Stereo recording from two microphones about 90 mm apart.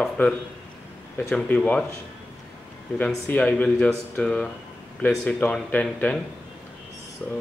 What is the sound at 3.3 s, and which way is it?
Speech, 15° left (ahead or behind).